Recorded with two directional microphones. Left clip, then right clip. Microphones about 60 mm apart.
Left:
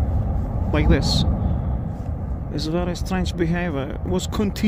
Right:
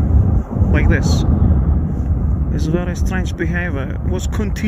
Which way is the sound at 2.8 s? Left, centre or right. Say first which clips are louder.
Right 2 dB; left.